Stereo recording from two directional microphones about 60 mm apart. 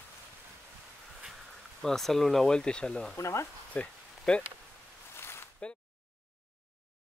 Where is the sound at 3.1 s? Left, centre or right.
Left.